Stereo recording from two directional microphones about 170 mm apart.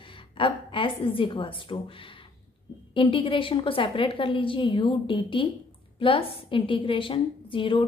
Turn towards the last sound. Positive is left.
turn(degrees=30)  # may be behind; listen again after turning